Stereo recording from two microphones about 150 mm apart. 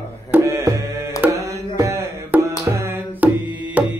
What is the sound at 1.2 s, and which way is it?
Tabla, 20° right (ahead or behind).